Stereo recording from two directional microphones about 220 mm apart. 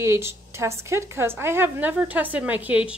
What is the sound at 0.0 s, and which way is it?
Speech, 10° right (ahead or behind).